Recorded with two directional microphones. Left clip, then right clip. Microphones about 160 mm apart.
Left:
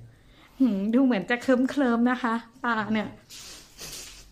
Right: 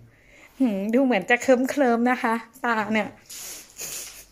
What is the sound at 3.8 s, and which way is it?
Music, 15° right (ahead or behind).